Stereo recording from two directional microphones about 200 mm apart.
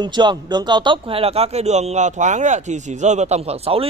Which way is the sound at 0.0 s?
20° right (ahead or behind).